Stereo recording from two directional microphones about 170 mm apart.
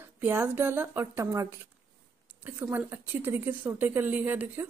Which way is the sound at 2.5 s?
10° right (ahead or behind).